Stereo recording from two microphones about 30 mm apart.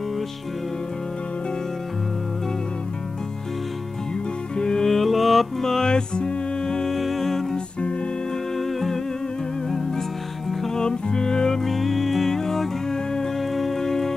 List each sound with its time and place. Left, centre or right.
4.6 s music: left
4.8 s music: centre
5.6 s music: centre
5.9 s music: left
6.9 s music: centre
8.5 s music: centre
10.7 s music: left
11.6 s music: centre
12.4 s music: centre
13.4 s music: centre